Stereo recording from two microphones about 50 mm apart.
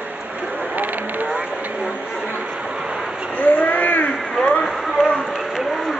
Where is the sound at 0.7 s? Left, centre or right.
Right.